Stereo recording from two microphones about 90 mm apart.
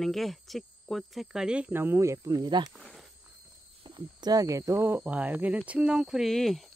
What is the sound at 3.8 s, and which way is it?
Speech, 60° right (ahead or behind).